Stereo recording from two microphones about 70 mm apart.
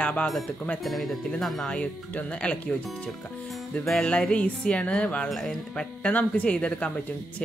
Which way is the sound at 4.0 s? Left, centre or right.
Centre.